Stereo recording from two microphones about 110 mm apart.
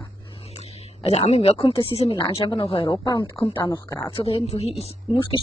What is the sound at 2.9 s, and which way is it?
Speech, 35° left (ahead or behind).